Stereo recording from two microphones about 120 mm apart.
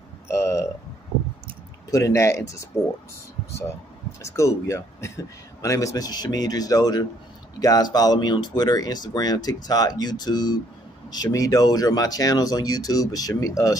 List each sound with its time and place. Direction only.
0.3 s speech: 25° left (ahead or behind)
1.9 s speech: 25° left (ahead or behind)
4.2 s speech: 25° left (ahead or behind)